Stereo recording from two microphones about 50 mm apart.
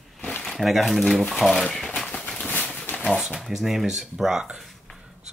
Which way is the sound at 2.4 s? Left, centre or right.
Left.